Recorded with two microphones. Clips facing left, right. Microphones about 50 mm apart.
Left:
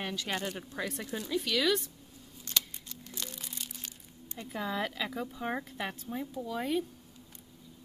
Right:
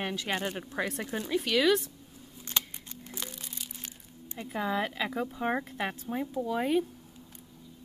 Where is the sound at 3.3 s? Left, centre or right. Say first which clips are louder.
Even; centre.